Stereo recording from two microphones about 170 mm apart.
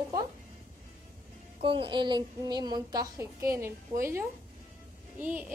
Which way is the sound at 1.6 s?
30° right (ahead or behind).